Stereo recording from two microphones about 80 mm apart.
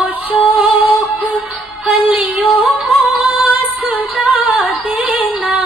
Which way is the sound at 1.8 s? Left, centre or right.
Centre.